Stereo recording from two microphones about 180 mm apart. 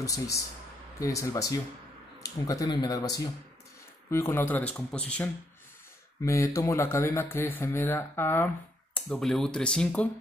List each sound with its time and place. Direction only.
0.0 s speech: 20° left (ahead or behind)
6.2 s speech: 15° left (ahead or behind)